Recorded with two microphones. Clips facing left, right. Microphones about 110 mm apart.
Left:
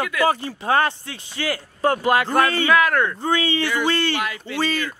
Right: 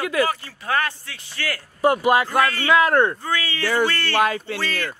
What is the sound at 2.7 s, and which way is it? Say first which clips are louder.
Speech: right 1 dB; 25° right (ahead or behind).